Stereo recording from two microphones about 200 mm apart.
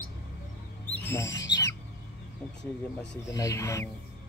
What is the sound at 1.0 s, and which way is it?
Bird, 10° left (ahead or behind).